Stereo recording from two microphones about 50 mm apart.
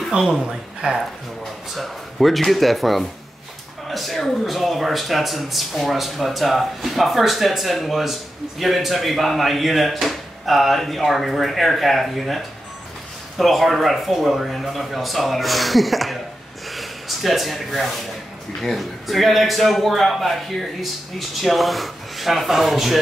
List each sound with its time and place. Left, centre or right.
0.2 s speech: centre
1.8 s speech: centre
16.7 s a sound: centre
18.6 s speech: centre